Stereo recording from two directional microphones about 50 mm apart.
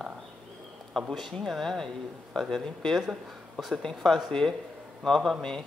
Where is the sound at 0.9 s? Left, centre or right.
Centre.